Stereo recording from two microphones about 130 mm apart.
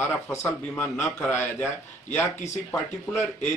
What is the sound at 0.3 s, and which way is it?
A man's voice, 20° left (ahead or behind).